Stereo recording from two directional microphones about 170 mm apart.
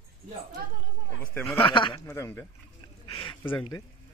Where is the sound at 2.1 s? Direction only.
15° left (ahead or behind).